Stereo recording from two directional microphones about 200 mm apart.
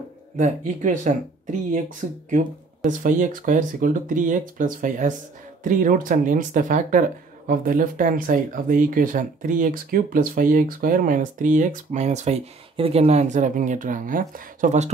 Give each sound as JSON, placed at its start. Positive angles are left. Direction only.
{"t": 0.4, "sound": "speech", "side_deg": -40}